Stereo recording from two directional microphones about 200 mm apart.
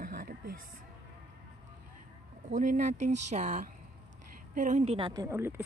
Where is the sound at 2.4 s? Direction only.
40° right (ahead or behind).